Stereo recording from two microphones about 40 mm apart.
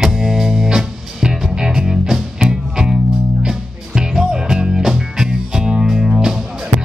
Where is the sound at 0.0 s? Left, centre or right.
Centre.